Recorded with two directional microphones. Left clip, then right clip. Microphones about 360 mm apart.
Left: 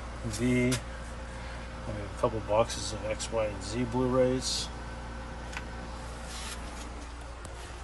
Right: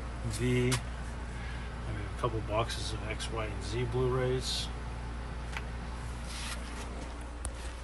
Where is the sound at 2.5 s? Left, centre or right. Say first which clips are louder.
Left 6 dB; centre.